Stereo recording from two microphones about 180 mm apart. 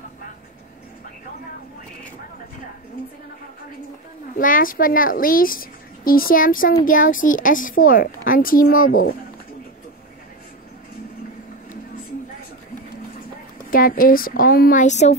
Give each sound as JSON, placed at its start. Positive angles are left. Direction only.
{"t": 4.4, "sound": "a woman's voice", "side_deg": 50}
{"t": 13.7, "sound": "a woman's voice", "side_deg": 50}